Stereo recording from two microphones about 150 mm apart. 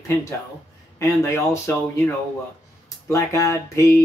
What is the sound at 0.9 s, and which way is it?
Speech, 20° left (ahead or behind).